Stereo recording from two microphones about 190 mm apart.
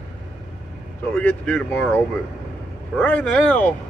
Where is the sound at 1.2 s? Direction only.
10° left (ahead or behind).